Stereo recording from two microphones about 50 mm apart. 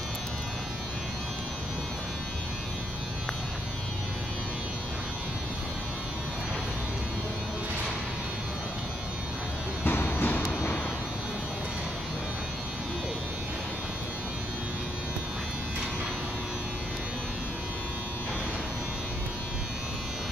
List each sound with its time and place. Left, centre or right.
9.8 s music: left